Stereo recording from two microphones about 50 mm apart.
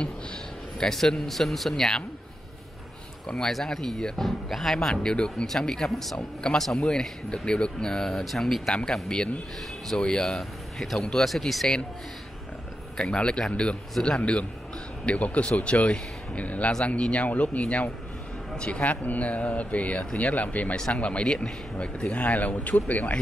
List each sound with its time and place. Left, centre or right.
0.7 s speech: centre
3.3 s speech: centre
5.0 s speech: centre
6.1 s speech: centre
12.9 s speech: centre